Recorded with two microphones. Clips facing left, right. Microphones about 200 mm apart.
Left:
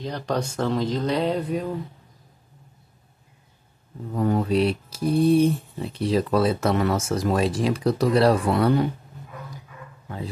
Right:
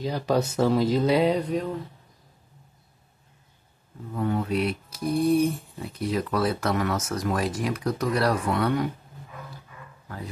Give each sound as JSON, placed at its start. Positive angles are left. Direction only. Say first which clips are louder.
{"t": 0.0, "sound": "speech", "louder": "right 2 dB", "side_deg": -5}
{"t": 1.4, "sound": "a sound", "louder": "left 1 dB", "side_deg": 5}
{"t": 4.1, "sound": "mantra", "louder": "left 4 dB", "side_deg": 40}
{"t": 5.2, "sound": "speech", "louder": "left 4 dB", "side_deg": 30}